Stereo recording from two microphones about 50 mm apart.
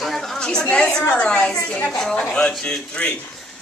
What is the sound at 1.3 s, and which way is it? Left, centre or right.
Speech, left.